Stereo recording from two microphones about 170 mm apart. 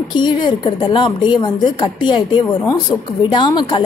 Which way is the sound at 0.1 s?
25° left (ahead or behind).